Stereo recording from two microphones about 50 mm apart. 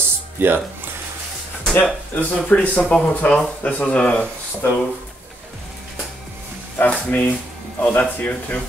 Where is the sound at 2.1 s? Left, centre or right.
Left.